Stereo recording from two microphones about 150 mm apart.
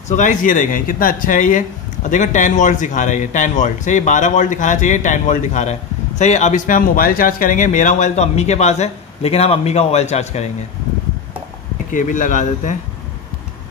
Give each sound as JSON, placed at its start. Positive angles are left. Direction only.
{"t": 0.1, "sound": "speech", "side_deg": 55}
{"t": 11.9, "sound": "speech", "side_deg": 60}